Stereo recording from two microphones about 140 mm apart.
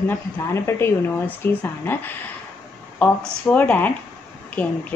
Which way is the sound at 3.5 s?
10° left (ahead or behind).